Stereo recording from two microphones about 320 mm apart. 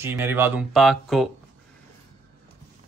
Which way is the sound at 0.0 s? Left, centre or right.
Centre.